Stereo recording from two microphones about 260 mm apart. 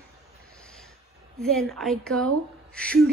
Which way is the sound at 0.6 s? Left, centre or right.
Centre.